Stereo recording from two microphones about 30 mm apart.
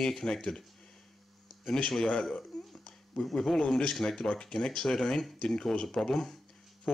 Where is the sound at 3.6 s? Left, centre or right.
Centre.